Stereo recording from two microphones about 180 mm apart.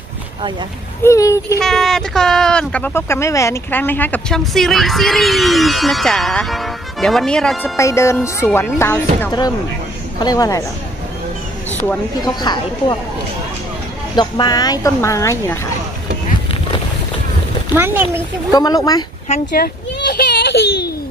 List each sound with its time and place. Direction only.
1.0 s speech: 15° left (ahead or behind)
1.6 s speech: centre (ahead or behind)
7.7 s speech: 15° left (ahead or behind)
12.2 s speech: 25° left (ahead or behind)
14.1 s speech: 25° left (ahead or behind)
17.7 s speech: 10° right (ahead or behind)
18.5 s speech: 20° left (ahead or behind)
19.5 s a sound: 65° left (ahead or behind)